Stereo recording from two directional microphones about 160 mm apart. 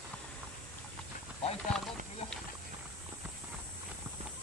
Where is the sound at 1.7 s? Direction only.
Centre (ahead or behind).